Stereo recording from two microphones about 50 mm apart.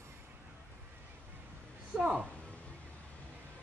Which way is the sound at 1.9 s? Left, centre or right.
Centre.